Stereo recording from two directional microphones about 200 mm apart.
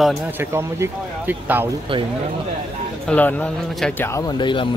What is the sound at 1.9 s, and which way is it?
Speech, 25° right (ahead or behind).